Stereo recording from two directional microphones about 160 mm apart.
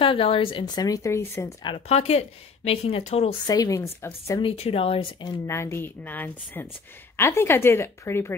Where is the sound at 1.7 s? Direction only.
40° left (ahead or behind).